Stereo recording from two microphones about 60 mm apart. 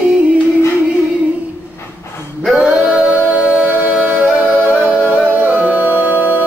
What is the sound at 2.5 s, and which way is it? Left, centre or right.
Male singing, right.